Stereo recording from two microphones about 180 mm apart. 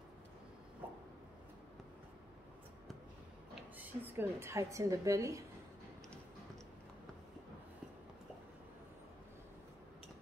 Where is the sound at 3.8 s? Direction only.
10° right (ahead or behind).